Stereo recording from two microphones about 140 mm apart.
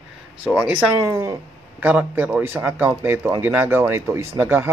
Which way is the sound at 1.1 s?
20° right (ahead or behind).